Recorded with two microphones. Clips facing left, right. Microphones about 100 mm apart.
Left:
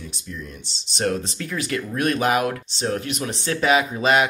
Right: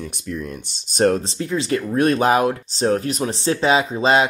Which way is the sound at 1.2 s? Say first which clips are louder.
Right 6 dB; 25° right (ahead or behind).